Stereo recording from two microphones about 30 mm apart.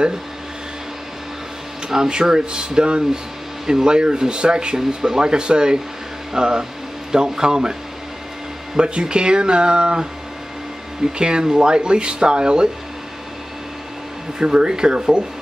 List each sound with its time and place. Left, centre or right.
2.0 s speech: right
8.7 s speech: right
11.1 s speech: right
14.4 s speech: right